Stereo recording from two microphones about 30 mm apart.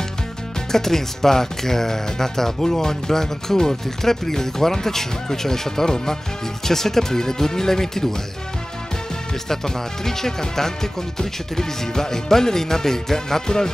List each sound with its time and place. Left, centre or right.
0.7 s speech: centre
10.0 s speech: centre